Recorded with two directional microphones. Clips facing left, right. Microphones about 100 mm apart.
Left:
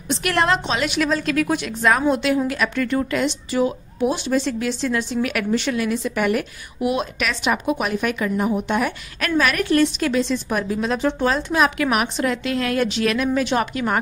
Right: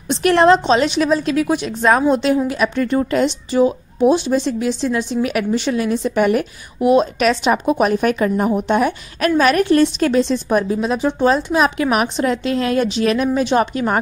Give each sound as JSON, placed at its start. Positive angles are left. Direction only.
{"t": 0.1, "sound": "a woman's voice", "side_deg": -25}
{"t": 10.8, "sound": "a woman's voice", "side_deg": -15}